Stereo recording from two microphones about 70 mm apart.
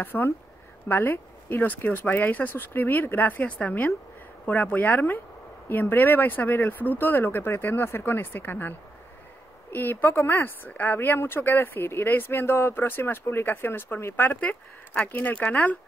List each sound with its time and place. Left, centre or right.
0.0 s speech: left
3.4 s a woman's voice: centre